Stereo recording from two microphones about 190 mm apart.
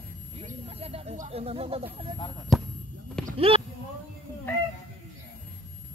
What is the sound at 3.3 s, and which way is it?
Speech, 30° right (ahead or behind).